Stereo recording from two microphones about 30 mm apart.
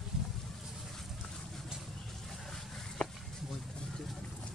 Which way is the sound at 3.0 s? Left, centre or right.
Left.